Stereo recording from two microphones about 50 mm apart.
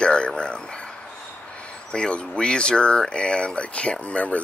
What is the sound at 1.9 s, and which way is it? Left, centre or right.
Speech, left.